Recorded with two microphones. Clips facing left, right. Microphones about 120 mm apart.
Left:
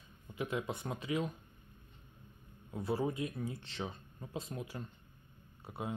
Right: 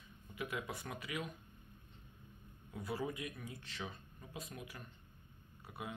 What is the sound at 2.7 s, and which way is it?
Speech, 30° left (ahead or behind).